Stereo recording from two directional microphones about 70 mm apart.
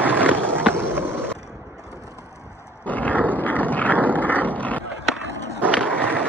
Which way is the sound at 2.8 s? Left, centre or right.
Left.